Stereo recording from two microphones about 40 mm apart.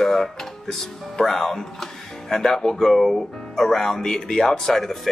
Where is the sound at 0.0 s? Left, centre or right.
Centre.